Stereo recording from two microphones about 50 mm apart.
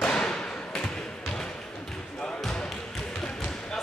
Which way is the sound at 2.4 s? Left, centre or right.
Centre.